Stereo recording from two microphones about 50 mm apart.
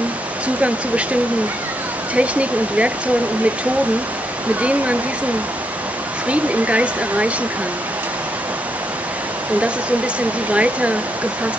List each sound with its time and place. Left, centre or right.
2.1 s speech: right
4.6 s speech: right
6.2 s speech: right
10.5 s speech: right